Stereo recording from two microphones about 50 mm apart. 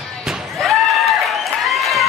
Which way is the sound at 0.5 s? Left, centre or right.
Centre.